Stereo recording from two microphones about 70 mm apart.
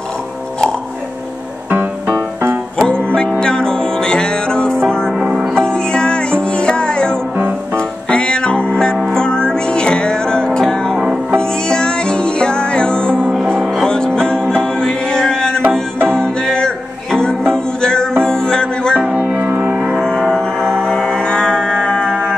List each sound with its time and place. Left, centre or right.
1.7 s music: right
2.8 s music: centre
5.1 s music: centre
5.6 s music: centre
7.3 s music: right
8.1 s music: centre
19.1 s music: right
19.9 s music: centre